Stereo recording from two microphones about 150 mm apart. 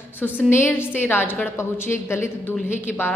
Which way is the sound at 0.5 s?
15° left (ahead or behind).